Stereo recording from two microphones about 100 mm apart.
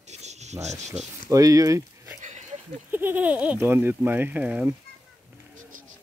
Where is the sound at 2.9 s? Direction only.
20° right (ahead or behind).